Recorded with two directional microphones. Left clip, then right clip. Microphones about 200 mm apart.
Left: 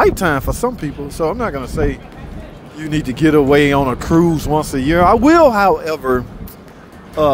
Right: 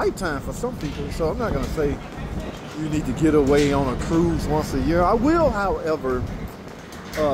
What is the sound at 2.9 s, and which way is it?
Speech, 20° left (ahead or behind).